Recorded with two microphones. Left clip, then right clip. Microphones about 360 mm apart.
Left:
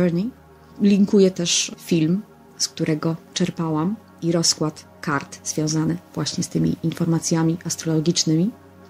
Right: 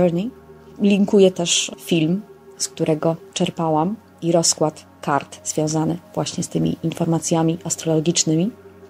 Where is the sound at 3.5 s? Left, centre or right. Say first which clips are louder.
Right 8 dB; right.